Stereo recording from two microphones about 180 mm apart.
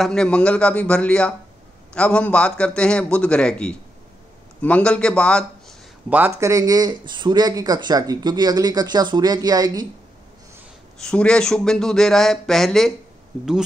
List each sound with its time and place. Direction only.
0.0 s a man's voice: 5° left (ahead or behind)
6.0 s speech: 10° right (ahead or behind)
11.0 s speech: 5° left (ahead or behind)